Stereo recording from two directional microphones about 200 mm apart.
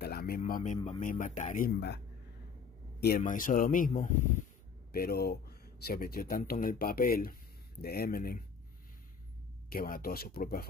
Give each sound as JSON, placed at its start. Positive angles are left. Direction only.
{"t": 0.0, "sound": "a man's voice", "side_deg": 50}
{"t": 3.0, "sound": "speech", "side_deg": 45}
{"t": 4.9, "sound": "speech", "side_deg": 50}
{"t": 9.7, "sound": "speech", "side_deg": 45}